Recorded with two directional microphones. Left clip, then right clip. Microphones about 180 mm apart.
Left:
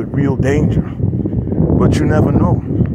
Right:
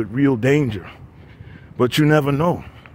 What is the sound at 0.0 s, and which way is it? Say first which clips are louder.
Speech: even; 45° right (ahead or behind).